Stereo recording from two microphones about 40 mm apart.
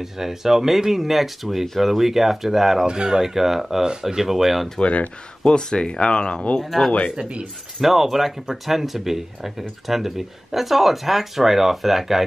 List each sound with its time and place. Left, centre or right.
0.0 s speech: centre
2.9 s speech: centre
4.7 s speech: left
5.4 s speech: centre
6.6 s speech: centre
7.2 s speech: right
7.8 s speech: centre